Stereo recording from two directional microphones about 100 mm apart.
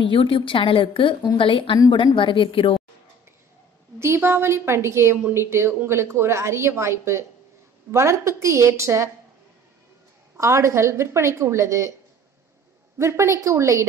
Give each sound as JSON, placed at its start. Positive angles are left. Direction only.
{"t": 0.1, "sound": "a woman's voice", "side_deg": 60}
{"t": 4.0, "sound": "a woman's voice", "side_deg": -25}
{"t": 10.3, "sound": "a woman's voice", "side_deg": -30}
{"t": 12.9, "sound": "a woman's voice", "side_deg": -25}